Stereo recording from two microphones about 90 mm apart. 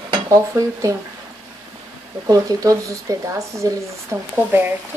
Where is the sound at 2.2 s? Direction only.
40° right (ahead or behind).